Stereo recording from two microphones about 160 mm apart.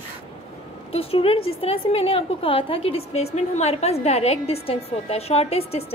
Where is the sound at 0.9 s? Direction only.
35° left (ahead or behind).